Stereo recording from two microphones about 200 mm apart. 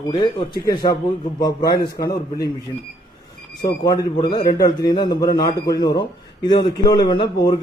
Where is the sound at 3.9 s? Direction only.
20° left (ahead or behind).